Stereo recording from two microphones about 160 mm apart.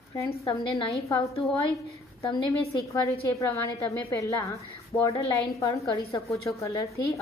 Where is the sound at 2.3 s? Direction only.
20° left (ahead or behind).